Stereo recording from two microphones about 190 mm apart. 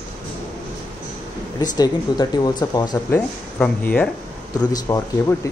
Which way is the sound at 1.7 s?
20° left (ahead or behind).